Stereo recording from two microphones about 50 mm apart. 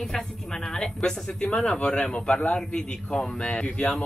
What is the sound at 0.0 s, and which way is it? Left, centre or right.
A man's voice, centre.